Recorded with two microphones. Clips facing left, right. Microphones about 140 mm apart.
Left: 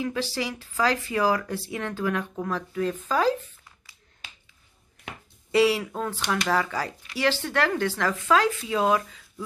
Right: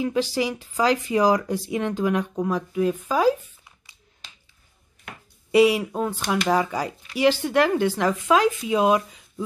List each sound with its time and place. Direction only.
0.0 s speech: 15° right (ahead or behind)
5.5 s speech: 15° right (ahead or behind)